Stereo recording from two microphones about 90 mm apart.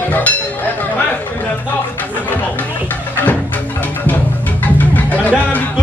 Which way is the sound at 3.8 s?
20° left (ahead or behind).